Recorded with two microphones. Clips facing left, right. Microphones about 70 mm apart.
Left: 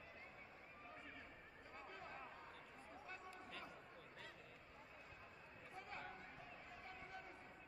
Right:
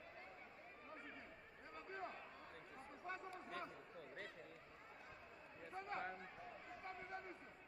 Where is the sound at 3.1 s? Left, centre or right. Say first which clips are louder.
Right 7 dB; right.